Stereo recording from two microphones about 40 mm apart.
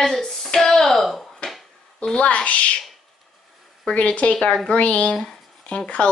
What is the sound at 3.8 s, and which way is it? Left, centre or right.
A woman's voice, left.